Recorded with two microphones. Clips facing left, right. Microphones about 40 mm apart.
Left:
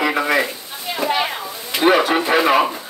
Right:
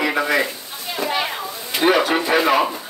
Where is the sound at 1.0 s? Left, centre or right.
Centre.